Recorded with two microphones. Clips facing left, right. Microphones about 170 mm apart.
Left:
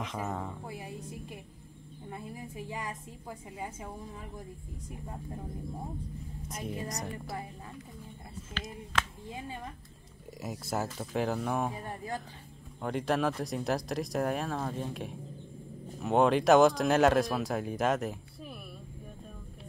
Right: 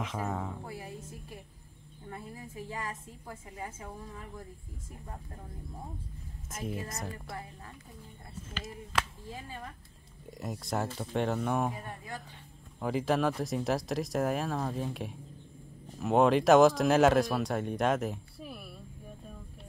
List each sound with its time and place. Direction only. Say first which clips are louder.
0.0 s speech: right 1 dB; centre (ahead or behind)
0.7 s speech: even; 15° left (ahead or behind)
2.0 s a woman's voice: left 2 dB; 15° left (ahead or behind)
6.5 s speech: even; centre (ahead or behind)
10.4 s speech: even; 5° left (ahead or behind)
12.8 s speech: right 1 dB; centre (ahead or behind)